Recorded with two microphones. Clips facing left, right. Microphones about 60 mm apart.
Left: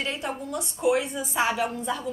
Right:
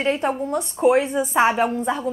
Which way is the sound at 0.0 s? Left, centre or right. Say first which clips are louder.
Right 9 dB; right.